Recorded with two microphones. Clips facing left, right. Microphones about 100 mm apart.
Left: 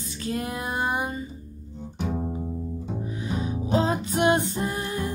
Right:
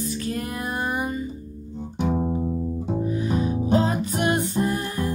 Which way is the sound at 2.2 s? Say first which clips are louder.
Right 6 dB; 30° right (ahead or behind).